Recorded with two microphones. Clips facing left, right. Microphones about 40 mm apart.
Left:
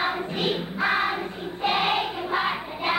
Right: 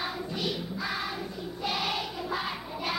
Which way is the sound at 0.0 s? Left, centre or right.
Left.